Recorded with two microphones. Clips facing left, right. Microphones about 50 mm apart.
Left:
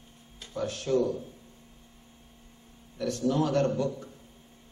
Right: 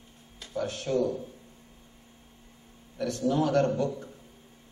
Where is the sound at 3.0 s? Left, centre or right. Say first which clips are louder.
Right 1 dB; right.